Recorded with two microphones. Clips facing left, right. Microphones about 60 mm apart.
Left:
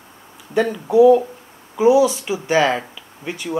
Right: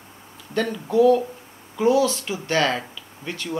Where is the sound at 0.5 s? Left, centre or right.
Centre.